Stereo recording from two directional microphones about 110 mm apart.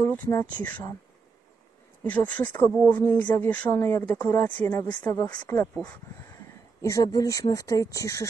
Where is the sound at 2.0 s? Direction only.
15° left (ahead or behind).